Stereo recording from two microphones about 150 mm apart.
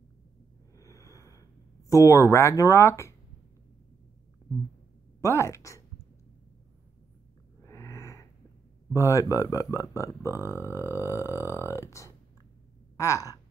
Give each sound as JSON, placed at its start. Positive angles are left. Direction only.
{"t": 0.7, "sound": "a sound", "side_deg": 20}
{"t": 1.9, "sound": "speech", "side_deg": 20}
{"t": 4.5, "sound": "a sound", "side_deg": 5}
{"t": 5.2, "sound": "speech", "side_deg": 20}
{"t": 7.6, "sound": "a sound", "side_deg": 20}
{"t": 8.9, "sound": "speech", "side_deg": 20}
{"t": 10.2, "sound": "speech", "side_deg": -20}
{"t": 10.8, "sound": "burping", "side_deg": -15}
{"t": 11.7, "sound": "speech", "side_deg": 20}